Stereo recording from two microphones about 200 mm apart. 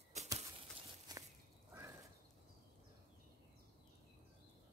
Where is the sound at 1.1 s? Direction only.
20° right (ahead or behind).